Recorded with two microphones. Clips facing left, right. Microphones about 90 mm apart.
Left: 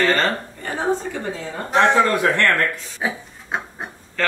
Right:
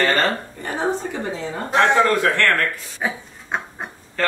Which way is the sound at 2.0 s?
20° left (ahead or behind).